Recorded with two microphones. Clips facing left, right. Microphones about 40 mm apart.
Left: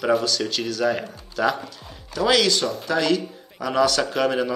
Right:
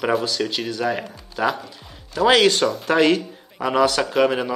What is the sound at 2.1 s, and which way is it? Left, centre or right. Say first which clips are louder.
Speech: right 4 dB; right.